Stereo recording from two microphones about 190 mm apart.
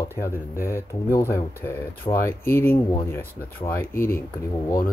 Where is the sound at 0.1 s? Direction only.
15° left (ahead or behind).